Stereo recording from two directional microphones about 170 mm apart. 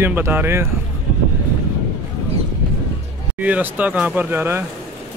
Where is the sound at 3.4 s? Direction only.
10° right (ahead or behind).